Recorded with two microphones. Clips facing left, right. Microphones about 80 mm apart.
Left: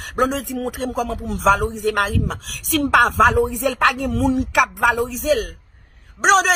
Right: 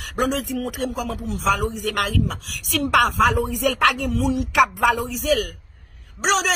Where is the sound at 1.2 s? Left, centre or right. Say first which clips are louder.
Left 5 dB; left.